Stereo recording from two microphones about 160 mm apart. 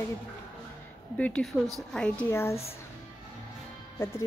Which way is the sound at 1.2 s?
5° left (ahead or behind).